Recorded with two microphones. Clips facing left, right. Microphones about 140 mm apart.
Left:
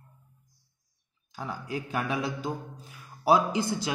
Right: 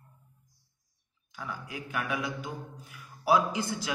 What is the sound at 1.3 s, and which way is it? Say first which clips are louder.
A man's voice: left 5 dB; 35° left (ahead or behind).